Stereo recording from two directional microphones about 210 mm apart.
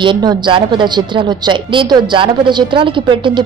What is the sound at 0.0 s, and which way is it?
A woman's voice, 20° right (ahead or behind).